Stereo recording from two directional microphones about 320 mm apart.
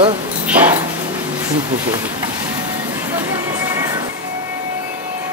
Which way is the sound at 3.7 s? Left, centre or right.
Centre.